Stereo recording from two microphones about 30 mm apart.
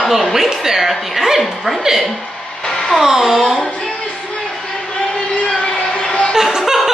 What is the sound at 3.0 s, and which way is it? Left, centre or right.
Speech, centre.